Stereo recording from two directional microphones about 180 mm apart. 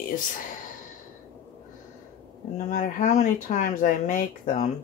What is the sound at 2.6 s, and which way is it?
Speech, 45° left (ahead or behind).